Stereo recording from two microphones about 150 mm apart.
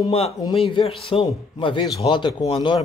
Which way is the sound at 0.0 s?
40° left (ahead or behind).